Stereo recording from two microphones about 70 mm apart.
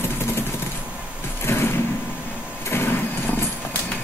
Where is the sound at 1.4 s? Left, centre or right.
Left.